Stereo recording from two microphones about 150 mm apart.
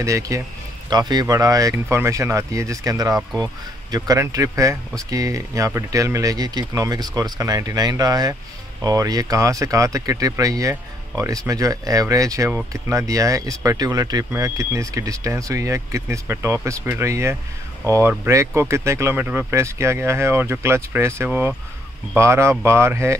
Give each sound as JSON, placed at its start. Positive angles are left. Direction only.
{"t": 0.0, "sound": "speech", "side_deg": -20}